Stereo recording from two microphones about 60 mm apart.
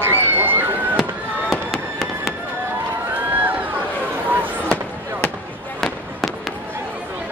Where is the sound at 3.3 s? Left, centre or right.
Right.